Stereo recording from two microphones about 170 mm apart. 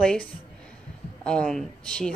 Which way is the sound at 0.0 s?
5° left (ahead or behind).